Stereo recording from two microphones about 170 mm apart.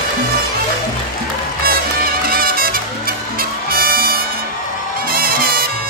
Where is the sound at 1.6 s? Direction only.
60° right (ahead or behind).